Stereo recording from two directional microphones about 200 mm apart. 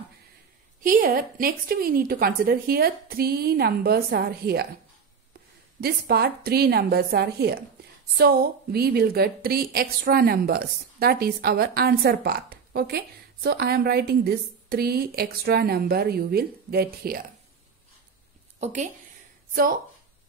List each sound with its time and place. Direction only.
0.7 s a woman's voice: 45° right (ahead or behind)
5.8 s a woman's voice: 50° right (ahead or behind)
18.6 s a woman's voice: 35° right (ahead or behind)